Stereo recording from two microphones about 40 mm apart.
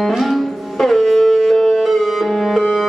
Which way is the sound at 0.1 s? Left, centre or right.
Centre.